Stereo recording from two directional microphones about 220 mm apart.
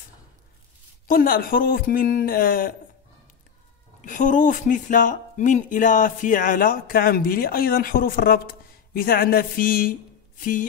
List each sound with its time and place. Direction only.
1.0 s speech: 40° left (ahead or behind)
4.0 s speech: 35° left (ahead or behind)